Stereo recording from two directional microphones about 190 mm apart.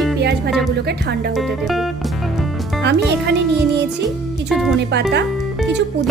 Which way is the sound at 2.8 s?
65° right (ahead or behind).